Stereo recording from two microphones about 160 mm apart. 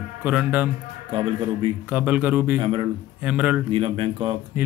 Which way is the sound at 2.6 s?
30° right (ahead or behind).